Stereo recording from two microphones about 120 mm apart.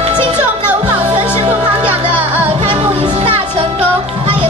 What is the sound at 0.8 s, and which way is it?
Music, 50° right (ahead or behind).